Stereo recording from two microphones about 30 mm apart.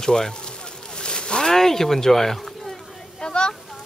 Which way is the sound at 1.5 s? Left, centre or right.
Centre.